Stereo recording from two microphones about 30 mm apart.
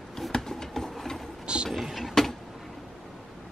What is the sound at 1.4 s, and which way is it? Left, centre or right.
Vehicle, right.